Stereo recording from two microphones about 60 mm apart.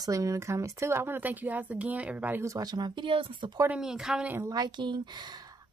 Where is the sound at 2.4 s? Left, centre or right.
Right.